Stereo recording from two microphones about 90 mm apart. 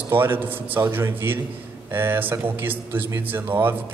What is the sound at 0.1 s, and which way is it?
Speech, 25° right (ahead or behind).